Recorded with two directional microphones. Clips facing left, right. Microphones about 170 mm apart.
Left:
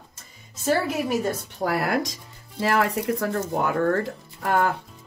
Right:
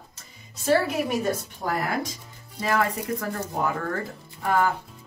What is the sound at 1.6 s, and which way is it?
Speech, 85° left.